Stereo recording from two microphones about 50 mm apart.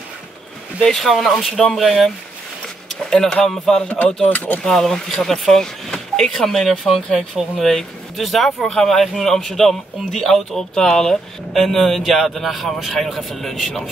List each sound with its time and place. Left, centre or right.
0.8 s speech: centre
4.3 s speech: left
4.6 s speech: centre
8.6 s speech: centre